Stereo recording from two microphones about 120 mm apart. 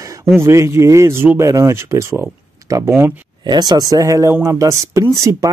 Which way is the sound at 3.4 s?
35° right (ahead or behind).